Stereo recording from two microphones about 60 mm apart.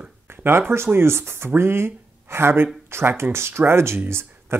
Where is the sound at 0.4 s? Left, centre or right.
Right.